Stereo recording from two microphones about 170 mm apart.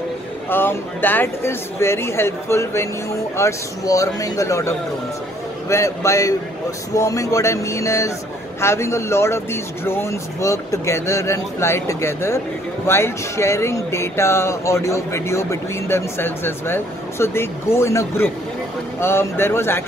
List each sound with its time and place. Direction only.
0.5 s a man's voice: 10° left (ahead or behind)